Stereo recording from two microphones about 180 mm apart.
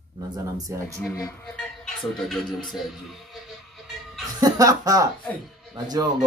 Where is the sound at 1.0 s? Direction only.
10° left (ahead or behind).